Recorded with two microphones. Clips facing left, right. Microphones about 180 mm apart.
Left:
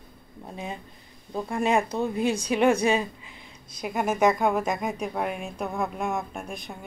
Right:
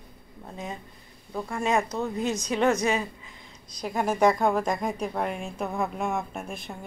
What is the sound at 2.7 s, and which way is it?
Speech, 30° left (ahead or behind).